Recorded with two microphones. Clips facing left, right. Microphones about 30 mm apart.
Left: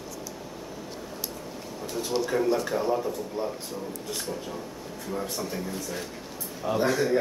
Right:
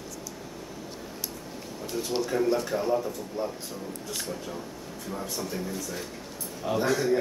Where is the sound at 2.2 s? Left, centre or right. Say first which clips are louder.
Left 1 dB; centre.